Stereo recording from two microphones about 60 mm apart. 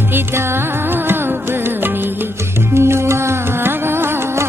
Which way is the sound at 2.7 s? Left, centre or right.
Right.